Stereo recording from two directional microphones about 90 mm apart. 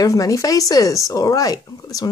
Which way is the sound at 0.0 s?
40° left (ahead or behind).